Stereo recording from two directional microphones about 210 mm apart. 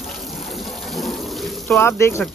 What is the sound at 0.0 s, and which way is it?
Water, centre (ahead or behind).